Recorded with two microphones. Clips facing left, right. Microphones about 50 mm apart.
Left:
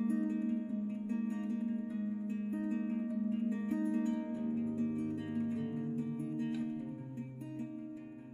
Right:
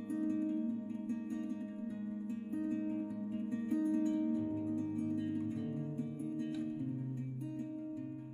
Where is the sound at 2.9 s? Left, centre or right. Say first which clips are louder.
Left 1 dB; left.